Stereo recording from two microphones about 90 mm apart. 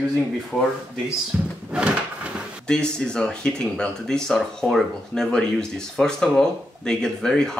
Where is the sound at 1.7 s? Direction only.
10° right (ahead or behind).